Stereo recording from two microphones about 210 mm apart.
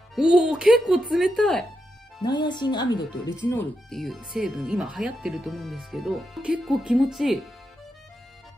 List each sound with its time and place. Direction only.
0.1 s speech: 5° right (ahead or behind)
2.2 s speech: 20° left (ahead or behind)
3.4 s speech: 5° left (ahead or behind)